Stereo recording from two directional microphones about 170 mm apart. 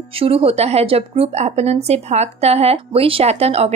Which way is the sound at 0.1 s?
35° right (ahead or behind).